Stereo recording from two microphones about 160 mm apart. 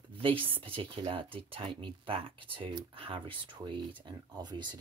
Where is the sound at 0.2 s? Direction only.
35° right (ahead or behind).